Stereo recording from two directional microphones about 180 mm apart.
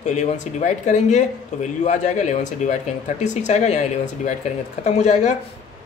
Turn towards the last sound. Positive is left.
turn(degrees=40)  # may be behind; listen again after turning